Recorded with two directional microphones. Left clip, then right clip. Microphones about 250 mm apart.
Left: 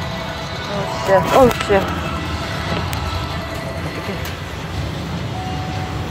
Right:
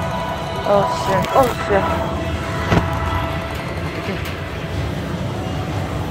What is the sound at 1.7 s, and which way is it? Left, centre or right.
Speech, left.